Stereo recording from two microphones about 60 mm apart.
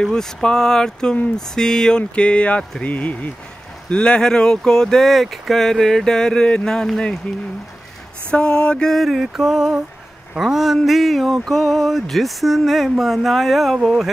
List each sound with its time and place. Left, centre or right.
0.0 s speech: centre
8.3 s speech: centre
8.9 s mantra: centre
10.4 s speech: centre